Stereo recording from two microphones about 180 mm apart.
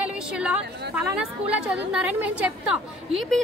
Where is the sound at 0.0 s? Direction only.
5° right (ahead or behind).